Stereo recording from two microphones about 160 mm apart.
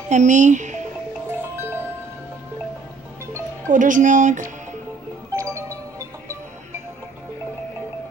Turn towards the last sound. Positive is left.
turn(degrees=-20)  # may be behind; listen again after turning